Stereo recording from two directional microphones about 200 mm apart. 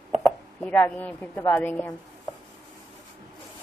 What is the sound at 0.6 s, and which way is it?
A woman's voice, 10° left (ahead or behind).